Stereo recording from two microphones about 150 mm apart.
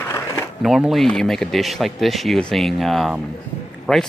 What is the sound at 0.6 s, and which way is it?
Speech, centre (ahead or behind).